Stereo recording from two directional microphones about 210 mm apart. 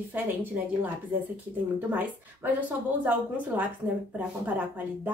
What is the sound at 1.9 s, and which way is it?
A woman's voice, 10° right (ahead or behind).